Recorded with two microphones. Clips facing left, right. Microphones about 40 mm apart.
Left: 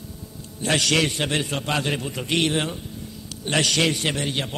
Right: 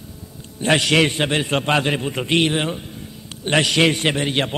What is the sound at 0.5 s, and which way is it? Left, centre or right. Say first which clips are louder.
Speech: right 5 dB; right.